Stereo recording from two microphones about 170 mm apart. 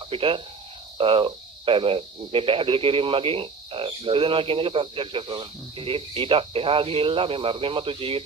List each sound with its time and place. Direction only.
0.1 s speech: 30° right (ahead or behind)